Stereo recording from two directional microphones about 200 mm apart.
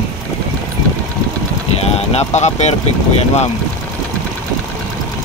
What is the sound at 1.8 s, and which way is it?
Speech, 30° left (ahead or behind).